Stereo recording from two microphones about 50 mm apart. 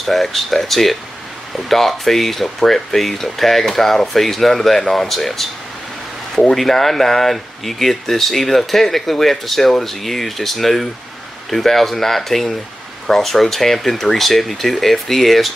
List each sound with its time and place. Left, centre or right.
0.0 s speech: centre
6.5 s speech: centre